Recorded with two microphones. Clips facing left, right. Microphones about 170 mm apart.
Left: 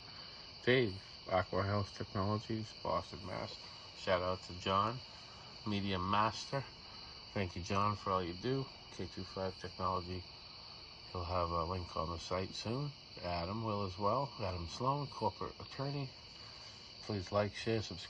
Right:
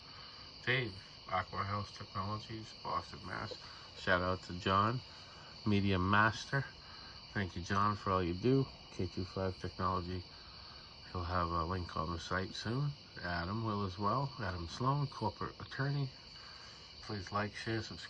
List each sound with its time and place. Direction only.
0.7 s speech: 30° left (ahead or behind)
2.8 s speech: 25° left (ahead or behind)
4.0 s speech: 5° left (ahead or behind)
8.0 s speech: centre (ahead or behind)
9.8 s speech: 15° left (ahead or behind)
11.1 s speech: 10° left (ahead or behind)
17.1 s speech: 25° left (ahead or behind)